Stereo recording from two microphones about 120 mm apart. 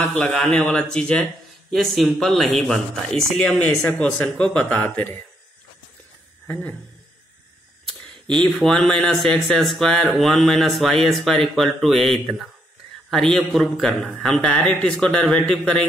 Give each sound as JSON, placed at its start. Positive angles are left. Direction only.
{"t": 0.1, "sound": "speech", "side_deg": 5}
{"t": 6.4, "sound": "a sound", "side_deg": 15}
{"t": 8.3, "sound": "speech", "side_deg": 5}